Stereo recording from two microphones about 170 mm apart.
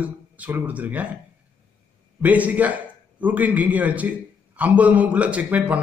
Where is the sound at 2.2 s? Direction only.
10° right (ahead or behind).